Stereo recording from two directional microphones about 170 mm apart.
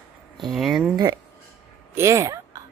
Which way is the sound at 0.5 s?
Centre (ahead or behind).